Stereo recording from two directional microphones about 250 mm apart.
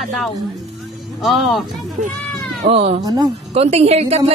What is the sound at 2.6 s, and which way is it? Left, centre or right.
A woman's voice, right.